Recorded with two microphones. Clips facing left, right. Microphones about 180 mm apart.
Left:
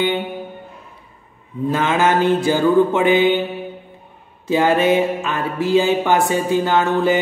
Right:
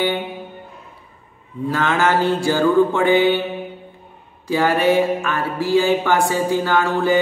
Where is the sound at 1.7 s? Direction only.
20° left (ahead or behind).